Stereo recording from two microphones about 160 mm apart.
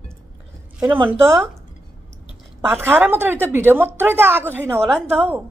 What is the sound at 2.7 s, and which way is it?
A woman's voice, 15° right (ahead or behind).